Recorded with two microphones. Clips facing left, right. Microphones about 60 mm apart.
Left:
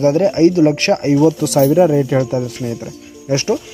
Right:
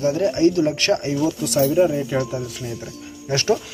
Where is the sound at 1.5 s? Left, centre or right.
Left.